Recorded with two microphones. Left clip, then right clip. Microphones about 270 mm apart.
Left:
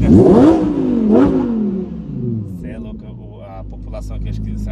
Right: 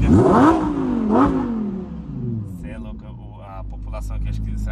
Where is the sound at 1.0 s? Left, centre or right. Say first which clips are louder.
Left 4 dB; right.